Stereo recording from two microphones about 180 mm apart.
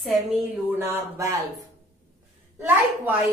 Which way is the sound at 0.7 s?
15° right (ahead or behind).